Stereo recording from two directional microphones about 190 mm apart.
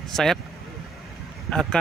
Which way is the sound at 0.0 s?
Centre (ahead or behind).